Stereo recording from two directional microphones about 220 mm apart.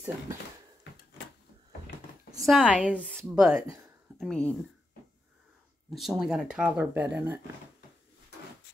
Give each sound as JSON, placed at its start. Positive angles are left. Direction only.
{"t": 2.4, "sound": "speech", "side_deg": 0}
{"t": 5.9, "sound": "speech", "side_deg": 0}